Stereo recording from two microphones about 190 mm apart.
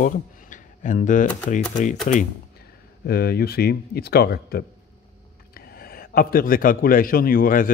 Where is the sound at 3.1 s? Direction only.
55° left (ahead or behind).